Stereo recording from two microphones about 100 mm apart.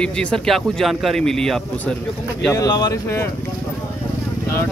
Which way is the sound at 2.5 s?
35° left (ahead or behind).